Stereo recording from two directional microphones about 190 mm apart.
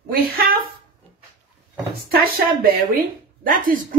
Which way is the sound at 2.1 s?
50° right (ahead or behind).